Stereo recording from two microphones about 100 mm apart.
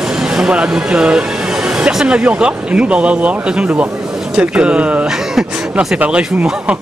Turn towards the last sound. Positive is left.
turn(degrees=-10)  # may be behind; listen again after turning